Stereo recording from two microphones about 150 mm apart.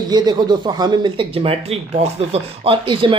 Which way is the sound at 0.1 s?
30° right (ahead or behind).